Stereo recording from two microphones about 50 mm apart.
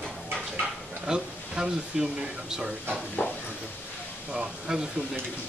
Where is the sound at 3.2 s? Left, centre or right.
Left.